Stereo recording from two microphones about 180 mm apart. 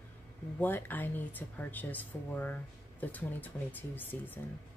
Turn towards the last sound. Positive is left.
turn(degrees=10)  # may be behind; listen again after turning